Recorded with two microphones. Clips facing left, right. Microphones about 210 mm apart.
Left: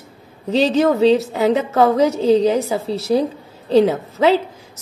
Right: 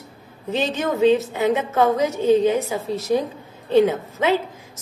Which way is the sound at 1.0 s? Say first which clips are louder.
Left 3 dB; 35° left (ahead or behind).